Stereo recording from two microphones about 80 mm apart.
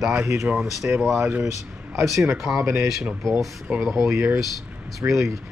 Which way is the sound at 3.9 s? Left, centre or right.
Right.